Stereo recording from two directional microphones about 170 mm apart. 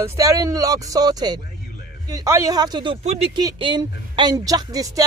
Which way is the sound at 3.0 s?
40° right (ahead or behind).